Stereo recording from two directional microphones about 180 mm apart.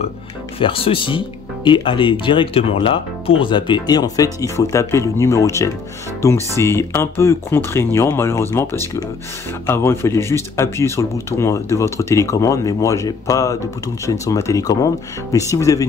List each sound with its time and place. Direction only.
0.6 s speech: 30° left (ahead or behind)